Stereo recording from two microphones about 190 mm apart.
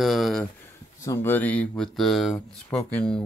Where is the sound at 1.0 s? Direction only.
15° left (ahead or behind).